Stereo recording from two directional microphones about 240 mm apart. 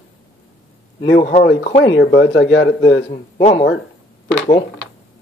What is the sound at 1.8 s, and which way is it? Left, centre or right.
Speech, left.